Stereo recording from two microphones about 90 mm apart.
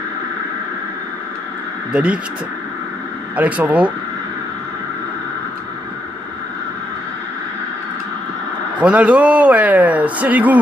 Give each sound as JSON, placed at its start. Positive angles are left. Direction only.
{"t": 1.9, "sound": "speech", "side_deg": -15}
{"t": 3.3, "sound": "speech", "side_deg": -15}
{"t": 8.8, "sound": "speech", "side_deg": -10}